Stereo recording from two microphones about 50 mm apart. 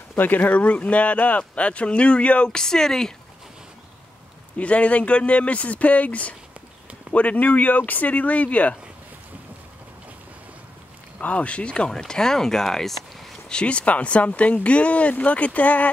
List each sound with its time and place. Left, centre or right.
0.1 s speech: left; by 3.1 s centre
4.6 s speech: left
11.1 s speech: left; by 13.0 s centre
13.5 s speech: left